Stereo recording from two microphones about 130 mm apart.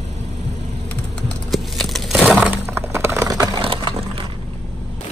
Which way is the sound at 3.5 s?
40° right (ahead or behind).